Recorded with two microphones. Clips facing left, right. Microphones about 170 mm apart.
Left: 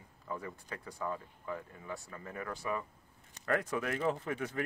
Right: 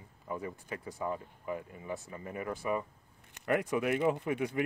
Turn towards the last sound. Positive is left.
turn(degrees=-15)  # may be behind; listen again after turning